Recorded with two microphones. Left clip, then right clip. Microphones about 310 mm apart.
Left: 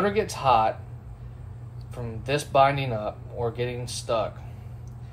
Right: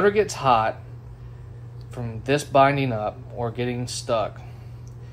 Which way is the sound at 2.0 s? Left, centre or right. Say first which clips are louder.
Right 4 dB; right.